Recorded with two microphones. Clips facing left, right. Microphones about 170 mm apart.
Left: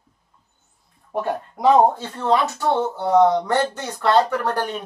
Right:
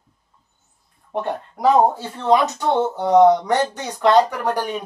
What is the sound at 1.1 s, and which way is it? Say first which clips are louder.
Speech: even; 5° left (ahead or behind).